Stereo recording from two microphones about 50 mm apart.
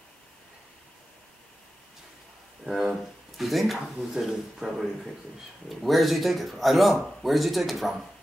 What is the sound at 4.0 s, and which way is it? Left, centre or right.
A man's voice, centre.